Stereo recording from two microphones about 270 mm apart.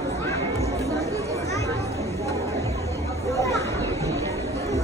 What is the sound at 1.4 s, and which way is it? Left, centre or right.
Chatter, centre.